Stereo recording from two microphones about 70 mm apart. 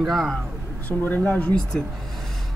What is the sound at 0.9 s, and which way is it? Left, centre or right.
Speech, left.